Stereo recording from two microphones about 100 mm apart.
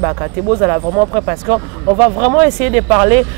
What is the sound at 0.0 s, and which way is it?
Speech, 10° right (ahead or behind).